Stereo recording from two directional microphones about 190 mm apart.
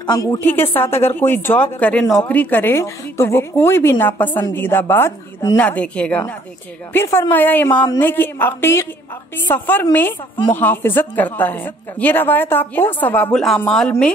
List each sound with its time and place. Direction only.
0.0 s a woman's voice: 20° left (ahead or behind)
0.4 s a woman's voice: 10° left (ahead or behind)